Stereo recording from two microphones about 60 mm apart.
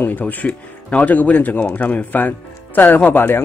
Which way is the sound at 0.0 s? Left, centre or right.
Left.